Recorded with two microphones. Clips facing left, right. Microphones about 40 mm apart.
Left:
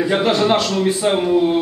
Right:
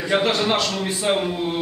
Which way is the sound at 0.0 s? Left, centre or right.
Centre.